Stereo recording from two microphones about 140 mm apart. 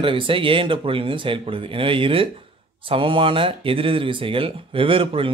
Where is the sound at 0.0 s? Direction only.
40° right (ahead or behind).